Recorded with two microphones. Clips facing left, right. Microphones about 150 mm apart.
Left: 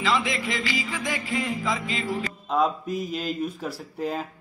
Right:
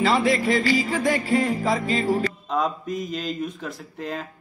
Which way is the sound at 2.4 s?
5° left (ahead or behind).